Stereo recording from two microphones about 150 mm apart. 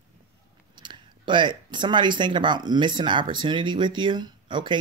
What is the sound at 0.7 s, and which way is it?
Speech, 30° right (ahead or behind).